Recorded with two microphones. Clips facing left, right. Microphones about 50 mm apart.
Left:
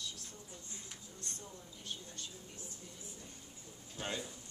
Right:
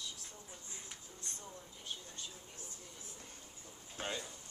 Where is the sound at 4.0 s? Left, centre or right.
Centre.